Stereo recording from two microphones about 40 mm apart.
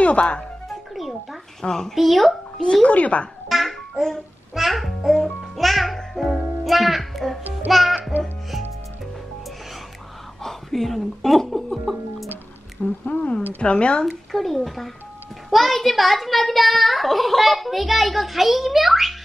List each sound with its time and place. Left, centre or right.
0.0 s speech: left
0.7 s music: centre
1.6 s speech: centre
2.0 s a child's voice: centre
2.6 s a woman's voice: left
3.4 s music: centre
6.6 s a child's voice: centre
7.6 s music: centre
10.4 s a child's voice: centre
12.8 s a woman's voice: left
14.0 s a child's voice: centre